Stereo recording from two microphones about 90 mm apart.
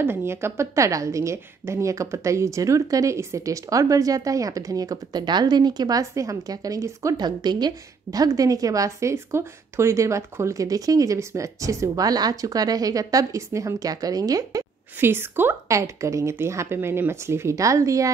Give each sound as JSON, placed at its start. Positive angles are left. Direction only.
{"t": 0.0, "sound": "a woman's voice", "side_deg": -25}
{"t": 7.2, "sound": "a woman's voice", "side_deg": -50}
{"t": 15.0, "sound": "a woman's voice", "side_deg": -25}
{"t": 15.7, "sound": "a woman's voice", "side_deg": -35}